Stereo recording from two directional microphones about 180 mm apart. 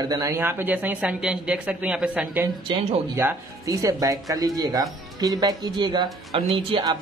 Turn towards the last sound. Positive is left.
turn(degrees=-25)  # may be behind; listen again after turning